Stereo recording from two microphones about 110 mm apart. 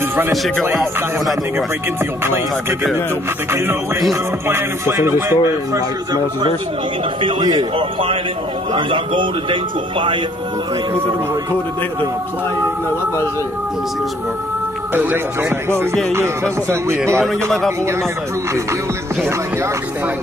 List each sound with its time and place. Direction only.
0.3 s speech: centre (ahead or behind)
2.2 s music: 20° right (ahead or behind)
7.2 s speech: 45° right (ahead or behind)
7.7 s a man's voice: 55° right (ahead or behind)
15.7 s music: 20° right (ahead or behind)
17.2 s speech: centre (ahead or behind)